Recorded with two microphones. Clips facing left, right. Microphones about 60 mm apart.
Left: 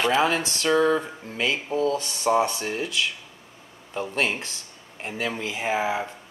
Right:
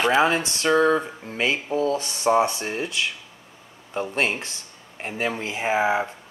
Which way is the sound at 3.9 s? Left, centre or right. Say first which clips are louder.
Right 1 dB; centre.